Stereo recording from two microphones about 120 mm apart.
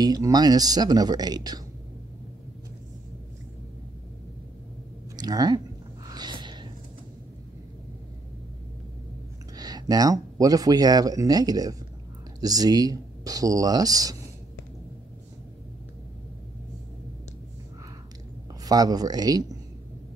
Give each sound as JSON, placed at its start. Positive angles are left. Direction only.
{"t": 0.0, "sound": "speech", "side_deg": -30}
{"t": 5.1, "sound": "speech", "side_deg": -35}
{"t": 6.0, "sound": "a sound", "side_deg": -35}
{"t": 9.6, "sound": "speech", "side_deg": -35}
{"t": 18.6, "sound": "speech", "side_deg": -30}